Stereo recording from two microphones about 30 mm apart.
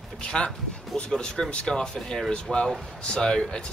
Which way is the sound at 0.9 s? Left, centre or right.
Left.